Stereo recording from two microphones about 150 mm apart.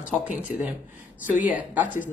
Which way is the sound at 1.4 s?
10° right (ahead or behind).